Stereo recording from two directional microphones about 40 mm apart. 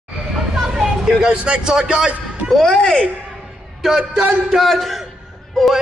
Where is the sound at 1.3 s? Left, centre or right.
Right.